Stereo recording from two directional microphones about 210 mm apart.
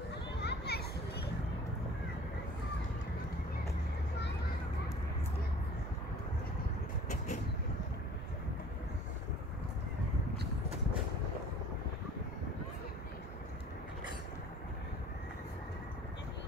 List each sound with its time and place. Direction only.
0.4 s children playing: 50° left (ahead or behind)